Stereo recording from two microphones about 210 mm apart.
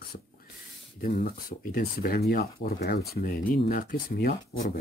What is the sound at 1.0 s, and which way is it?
Speech, 45° left (ahead or behind).